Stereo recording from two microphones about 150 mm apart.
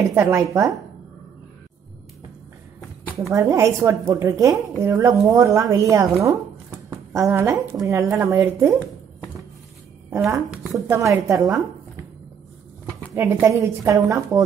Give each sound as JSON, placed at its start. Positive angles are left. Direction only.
{"t": 0.1, "sound": "a woman's voice", "side_deg": -15}
{"t": 3.3, "sound": "a woman's voice", "side_deg": -20}
{"t": 10.0, "sound": "a woman's voice", "side_deg": -15}
{"t": 13.1, "sound": "a woman's voice", "side_deg": -20}